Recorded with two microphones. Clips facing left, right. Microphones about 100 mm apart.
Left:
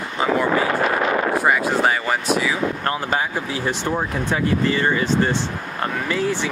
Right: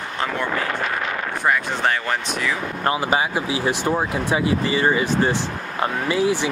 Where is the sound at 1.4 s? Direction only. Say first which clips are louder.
Right 2 dB; 5° left (ahead or behind).